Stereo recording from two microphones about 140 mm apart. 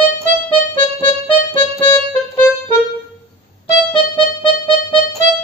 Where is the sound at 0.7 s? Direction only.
15° left (ahead or behind).